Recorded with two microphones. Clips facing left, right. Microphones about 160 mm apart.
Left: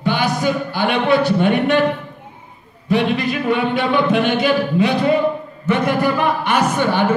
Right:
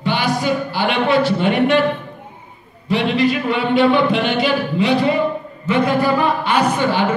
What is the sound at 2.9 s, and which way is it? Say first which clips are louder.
Speech: right 1 dB; 45° left (ahead or behind).